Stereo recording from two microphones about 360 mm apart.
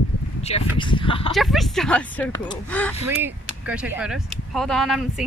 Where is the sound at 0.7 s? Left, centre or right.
Centre.